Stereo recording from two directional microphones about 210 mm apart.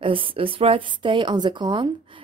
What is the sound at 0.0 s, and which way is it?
Speech, 25° right (ahead or behind).